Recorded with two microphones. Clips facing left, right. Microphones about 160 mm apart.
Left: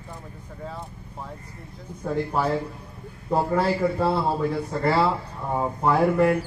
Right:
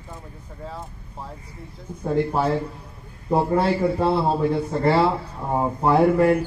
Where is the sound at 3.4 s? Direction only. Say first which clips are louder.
Right 2 dB; 25° right (ahead or behind).